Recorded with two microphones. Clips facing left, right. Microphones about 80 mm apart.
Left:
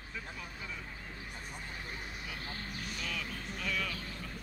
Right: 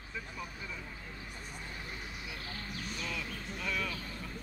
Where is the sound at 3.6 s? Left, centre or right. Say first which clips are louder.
Even; right.